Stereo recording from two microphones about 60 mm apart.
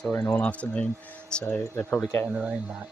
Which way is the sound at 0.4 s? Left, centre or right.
Left.